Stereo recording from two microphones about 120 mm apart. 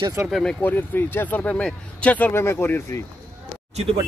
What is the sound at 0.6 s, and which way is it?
Speech, 15° left (ahead or behind).